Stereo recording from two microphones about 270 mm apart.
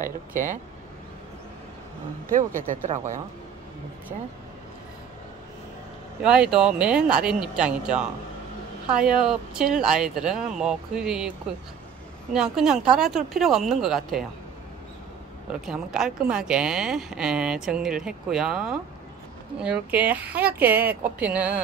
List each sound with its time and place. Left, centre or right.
0.0 s speech: right
2.2 s speech: right
6.2 s speech: centre
15.6 s speech: centre